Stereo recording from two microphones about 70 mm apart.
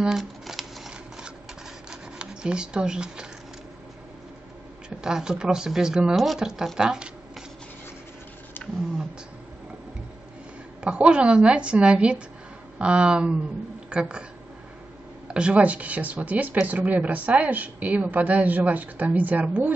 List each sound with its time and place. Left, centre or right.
0.0 s shuffling cards: centre
1.9 s zipper: centre
4.8 s a woman's voice: centre
8.6 s roaring cats: left
10.8 s a woman's voice: centre
15.2 s a woman's voice: centre